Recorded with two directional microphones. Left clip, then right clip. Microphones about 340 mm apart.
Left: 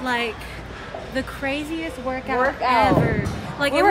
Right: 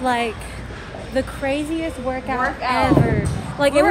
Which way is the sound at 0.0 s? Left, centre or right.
Centre.